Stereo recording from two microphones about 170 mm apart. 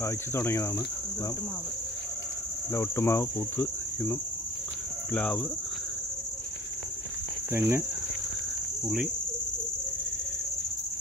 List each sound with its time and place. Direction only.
0.0 s cricket: 15° left (ahead or behind)
2.7 s cricket: 15° left (ahead or behind)
7.5 s speech: 15° right (ahead or behind)
8.8 s cricket: 5° right (ahead or behind)